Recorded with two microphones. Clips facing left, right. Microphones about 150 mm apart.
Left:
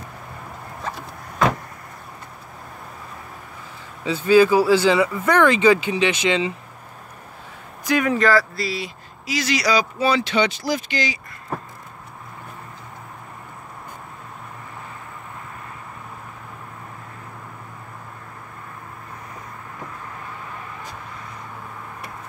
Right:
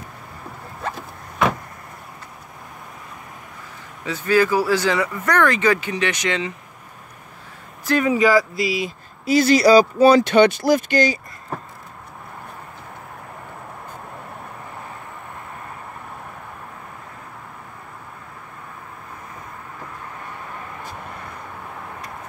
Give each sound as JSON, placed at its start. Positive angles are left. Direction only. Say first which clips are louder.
{"t": 4.0, "sound": "speech", "louder": "left 4 dB", "side_deg": 25}
{"t": 5.0, "sound": "speech", "louder": "left 3 dB", "side_deg": 10}
{"t": 5.3, "sound": "speech", "louder": "left 2 dB", "side_deg": 25}
{"t": 8.0, "sound": "speech", "louder": "right 3 dB", "side_deg": -10}
{"t": 8.8, "sound": "speech", "louder": "right 8 dB", "side_deg": -50}
{"t": 9.7, "sound": "speech", "louder": "right 8 dB", "side_deg": -40}